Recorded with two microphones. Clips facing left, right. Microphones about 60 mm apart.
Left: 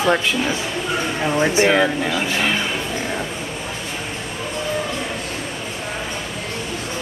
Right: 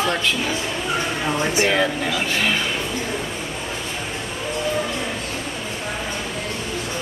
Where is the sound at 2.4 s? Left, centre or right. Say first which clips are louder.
Left 1 dB; centre.